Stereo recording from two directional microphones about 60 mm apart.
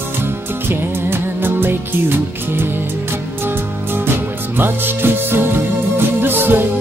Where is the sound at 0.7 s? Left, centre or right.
Right.